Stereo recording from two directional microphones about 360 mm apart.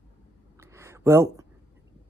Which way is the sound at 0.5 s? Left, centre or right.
Centre.